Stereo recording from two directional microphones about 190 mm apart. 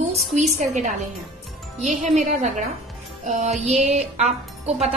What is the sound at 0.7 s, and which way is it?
Music, 40° right (ahead or behind).